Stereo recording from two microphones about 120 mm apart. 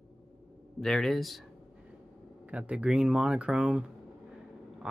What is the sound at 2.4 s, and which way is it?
Speech, 10° right (ahead or behind).